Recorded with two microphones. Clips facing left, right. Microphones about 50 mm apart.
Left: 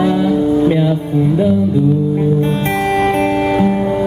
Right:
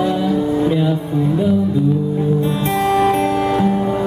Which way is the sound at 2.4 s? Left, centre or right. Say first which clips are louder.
Left 2 dB; left.